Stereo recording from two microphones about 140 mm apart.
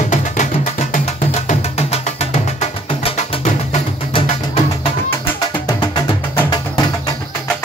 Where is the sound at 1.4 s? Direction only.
45° left (ahead or behind).